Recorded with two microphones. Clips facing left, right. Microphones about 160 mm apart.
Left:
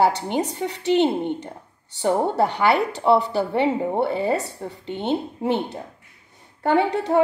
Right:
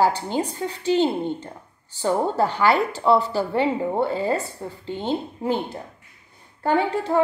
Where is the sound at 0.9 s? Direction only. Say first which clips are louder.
Left 1 dB; 20° left (ahead or behind).